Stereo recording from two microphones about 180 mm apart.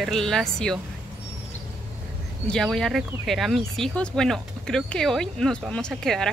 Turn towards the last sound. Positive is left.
turn(degrees=0)  # may be behind; listen again after turning